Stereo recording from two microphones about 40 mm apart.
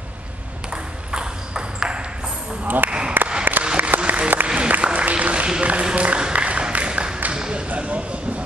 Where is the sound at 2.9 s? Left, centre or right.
Right.